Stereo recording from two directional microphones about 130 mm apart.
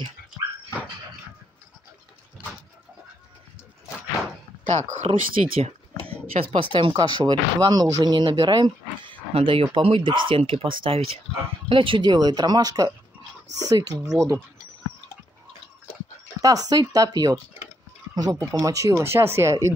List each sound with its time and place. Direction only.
4.6 s speech: 65° right (ahead or behind)
5.5 s speech: 50° right (ahead or behind); by 14.4 s 25° right (ahead or behind)
16.3 s speech: 30° right (ahead or behind)